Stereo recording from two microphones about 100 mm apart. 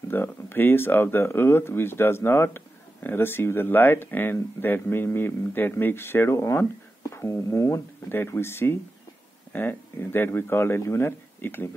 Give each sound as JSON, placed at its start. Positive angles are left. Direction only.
{"t": 0.1, "sound": "speech", "side_deg": 20}